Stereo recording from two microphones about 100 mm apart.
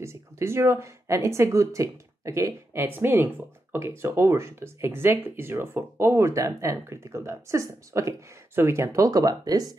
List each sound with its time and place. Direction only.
0.0 s speech: 25° right (ahead or behind)